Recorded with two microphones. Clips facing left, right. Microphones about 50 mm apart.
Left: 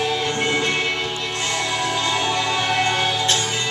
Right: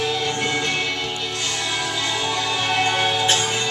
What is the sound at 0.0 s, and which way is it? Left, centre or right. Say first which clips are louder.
Music: left 1 dB; left.